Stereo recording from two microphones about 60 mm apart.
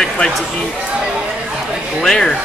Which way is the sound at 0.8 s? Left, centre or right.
Centre.